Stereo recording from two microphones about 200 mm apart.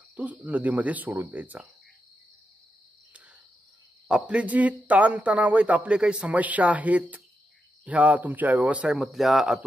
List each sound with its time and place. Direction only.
0.1 s a man's voice: 10° right (ahead or behind)
4.1 s a man's voice: 5° right (ahead or behind)